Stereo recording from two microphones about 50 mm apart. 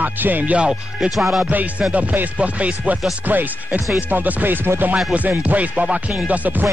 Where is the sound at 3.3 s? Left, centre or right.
Right.